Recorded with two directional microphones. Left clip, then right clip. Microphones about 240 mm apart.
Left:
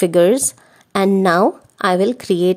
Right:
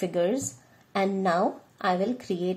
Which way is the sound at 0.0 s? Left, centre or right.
Left.